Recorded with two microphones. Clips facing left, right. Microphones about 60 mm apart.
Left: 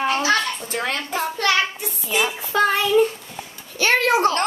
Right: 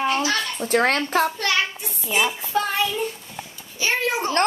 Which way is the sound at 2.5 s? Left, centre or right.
Left.